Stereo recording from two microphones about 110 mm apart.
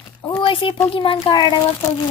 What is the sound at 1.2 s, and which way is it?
Speech, 45° left (ahead or behind).